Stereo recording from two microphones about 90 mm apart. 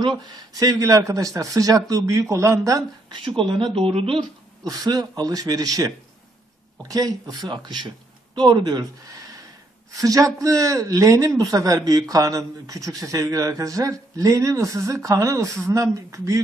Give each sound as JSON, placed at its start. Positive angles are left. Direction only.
{"t": 0.5, "sound": "speech", "side_deg": -40}
{"t": 3.3, "sound": "speech", "side_deg": -80}
{"t": 4.6, "sound": "speech", "side_deg": -45}
{"t": 7.5, "sound": "speech", "side_deg": -55}
{"t": 9.9, "sound": "speech", "side_deg": -40}